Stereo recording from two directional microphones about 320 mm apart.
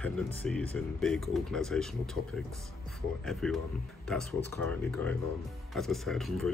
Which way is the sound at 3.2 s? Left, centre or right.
Centre.